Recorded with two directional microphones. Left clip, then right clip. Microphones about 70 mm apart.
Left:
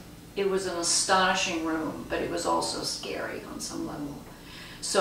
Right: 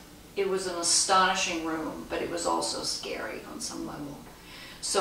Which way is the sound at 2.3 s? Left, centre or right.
Centre.